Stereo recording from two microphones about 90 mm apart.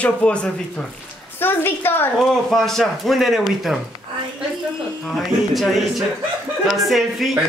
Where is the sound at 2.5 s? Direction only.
5° left (ahead or behind).